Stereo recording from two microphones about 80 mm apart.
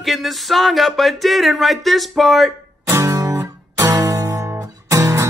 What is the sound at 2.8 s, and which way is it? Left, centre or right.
Music, right.